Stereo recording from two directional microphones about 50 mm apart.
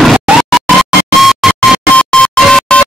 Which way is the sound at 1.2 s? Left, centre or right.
Centre.